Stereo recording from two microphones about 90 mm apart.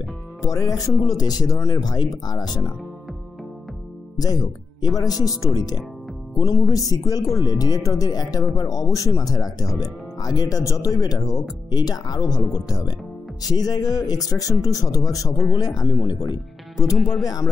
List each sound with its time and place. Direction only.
0.5 s speech: 45° left (ahead or behind)
4.2 s speech: 45° left (ahead or behind)
16.9 s speech: centre (ahead or behind)
17.2 s speech: 45° left (ahead or behind)